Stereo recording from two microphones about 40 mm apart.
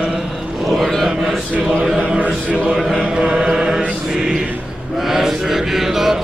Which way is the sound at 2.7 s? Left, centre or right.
Centre.